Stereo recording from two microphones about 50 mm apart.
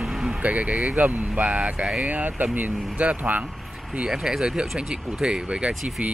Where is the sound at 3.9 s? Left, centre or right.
Centre.